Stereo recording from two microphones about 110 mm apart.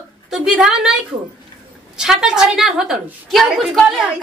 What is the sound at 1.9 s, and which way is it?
A woman's voice, 5° right (ahead or behind).